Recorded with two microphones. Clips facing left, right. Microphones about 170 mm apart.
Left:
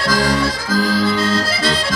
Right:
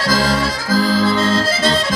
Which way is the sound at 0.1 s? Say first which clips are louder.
Left 1 dB; 45° right (ahead or behind).